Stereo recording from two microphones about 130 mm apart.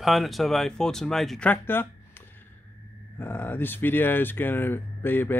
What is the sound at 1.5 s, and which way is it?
Speech, 15° left (ahead or behind).